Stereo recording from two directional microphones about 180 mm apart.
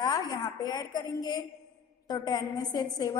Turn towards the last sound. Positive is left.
turn(degrees=20)  # may be behind; listen again after turning